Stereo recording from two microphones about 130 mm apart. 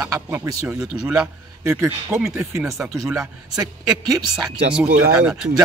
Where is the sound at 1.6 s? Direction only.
20° right (ahead or behind).